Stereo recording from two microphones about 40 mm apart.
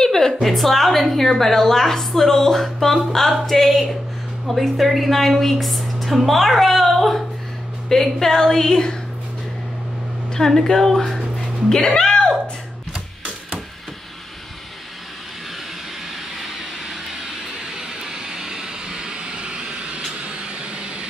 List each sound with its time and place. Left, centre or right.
0.0 s a woman's voice: centre
10.3 s a woman's voice: centre
11.3 s music: centre
17.7 s vehicle: centre